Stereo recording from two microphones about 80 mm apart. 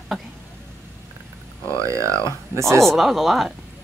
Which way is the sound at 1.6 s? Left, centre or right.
Right.